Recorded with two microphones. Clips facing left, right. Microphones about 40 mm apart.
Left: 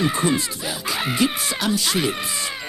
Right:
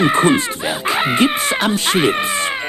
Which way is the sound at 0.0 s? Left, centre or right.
Right.